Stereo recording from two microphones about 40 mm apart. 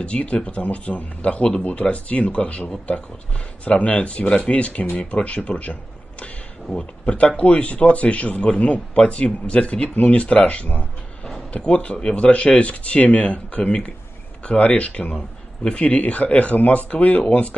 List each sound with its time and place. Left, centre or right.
0.0 s speech: left
5.6 s a sound: left
6.7 s speech: centre
7.1 s speech: left
14.4 s a sound: left
14.8 s speech: left